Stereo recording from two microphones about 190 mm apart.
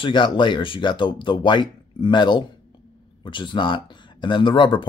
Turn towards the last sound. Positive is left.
turn(degrees=25)  # may be behind; listen again after turning